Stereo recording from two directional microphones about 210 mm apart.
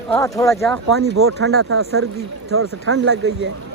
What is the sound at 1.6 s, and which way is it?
Speech, 90° right.